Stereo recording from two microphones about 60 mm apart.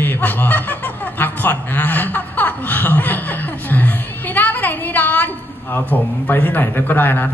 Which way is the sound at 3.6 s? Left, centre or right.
Left.